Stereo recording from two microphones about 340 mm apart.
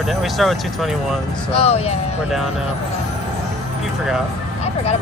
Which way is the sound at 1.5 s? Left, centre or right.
Centre.